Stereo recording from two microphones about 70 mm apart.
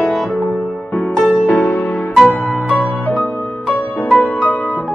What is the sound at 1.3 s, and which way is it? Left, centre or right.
Music, centre.